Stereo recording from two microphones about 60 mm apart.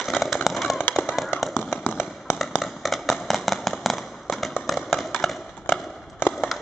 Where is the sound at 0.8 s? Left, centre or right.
Left.